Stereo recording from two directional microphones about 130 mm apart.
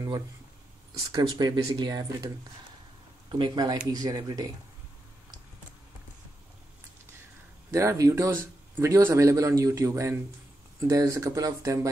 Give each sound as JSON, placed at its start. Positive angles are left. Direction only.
{"t": 0.9, "sound": "speech", "side_deg": -30}
{"t": 7.7, "sound": "speech", "side_deg": -20}